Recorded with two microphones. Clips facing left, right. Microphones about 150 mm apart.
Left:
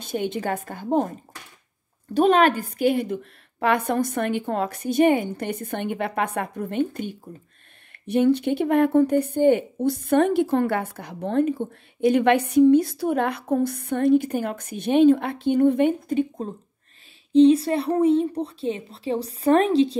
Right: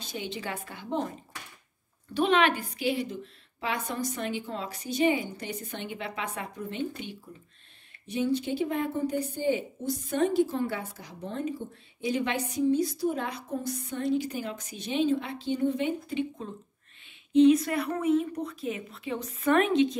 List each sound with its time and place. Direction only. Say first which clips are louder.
0.0 s a woman's voice: left 9 dB; 55° left (ahead or behind)
2.1 s a woman's voice: left 7 dB; 45° left (ahead or behind)
8.1 s a woman's voice: left 9 dB; 60° left (ahead or behind); by 16.5 s 40° left (ahead or behind)
17.3 s a woman's voice: left 5 dB; 30° left (ahead or behind)